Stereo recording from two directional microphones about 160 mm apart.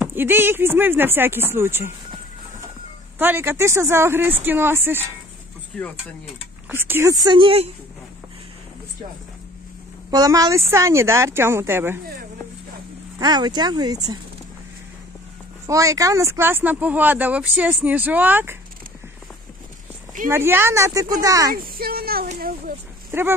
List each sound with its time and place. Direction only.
0.0 s speech: 15° right (ahead or behind)
3.2 s speech: 15° right (ahead or behind)
6.7 s speech: 15° right (ahead or behind); by 7.7 s 35° right (ahead or behind)
10.1 s speech: 25° right (ahead or behind)
13.2 s speech: 25° right (ahead or behind)
15.6 s speech: 20° right (ahead or behind)
20.2 s speech: 15° right (ahead or behind)
21.5 s speech: 65° right (ahead or behind)
23.1 s speech: 15° right (ahead or behind)